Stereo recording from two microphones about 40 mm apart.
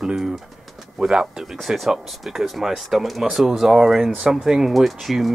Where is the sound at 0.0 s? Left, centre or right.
Centre.